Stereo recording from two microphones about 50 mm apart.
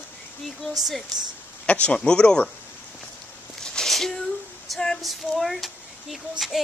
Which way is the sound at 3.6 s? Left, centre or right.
Centre.